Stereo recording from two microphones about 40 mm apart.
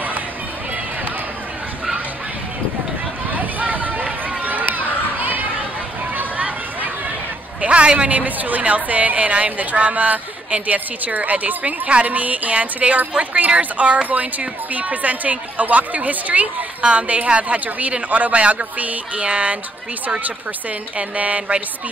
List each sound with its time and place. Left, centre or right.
3.3 s run: right
7.6 s a sound: right
8.2 s a woman's voice: right
21.2 s a woman's voice: right